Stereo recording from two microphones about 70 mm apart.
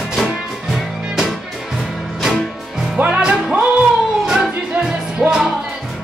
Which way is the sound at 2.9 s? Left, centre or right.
Centre.